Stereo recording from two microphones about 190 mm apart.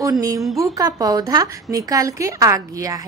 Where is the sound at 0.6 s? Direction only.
20° right (ahead or behind).